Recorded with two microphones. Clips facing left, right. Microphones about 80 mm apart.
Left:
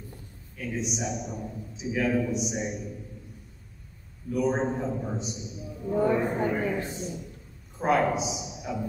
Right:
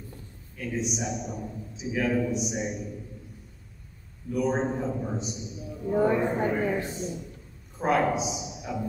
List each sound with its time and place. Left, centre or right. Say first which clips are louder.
0.6 s a man's voice: right 1 dB; centre
4.3 s a man's voice: even; centre
5.9 s speech: right 1 dB; right
6.9 s a man's voice: right 1 dB; centre